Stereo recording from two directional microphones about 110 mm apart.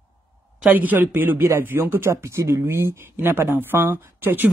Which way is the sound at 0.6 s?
15° right (ahead or behind).